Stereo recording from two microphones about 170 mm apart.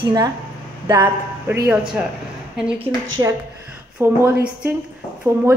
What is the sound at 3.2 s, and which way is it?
A woman's voice, 20° right (ahead or behind).